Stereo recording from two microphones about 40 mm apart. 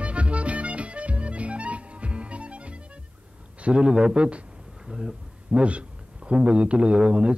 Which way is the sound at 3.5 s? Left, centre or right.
Right.